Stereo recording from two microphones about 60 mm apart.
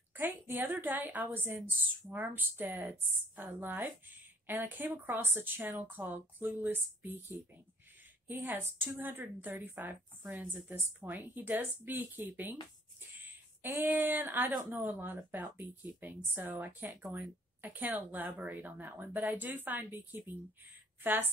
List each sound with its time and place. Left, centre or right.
0.1 s a woman's voice: right
13.6 s a woman's voice: right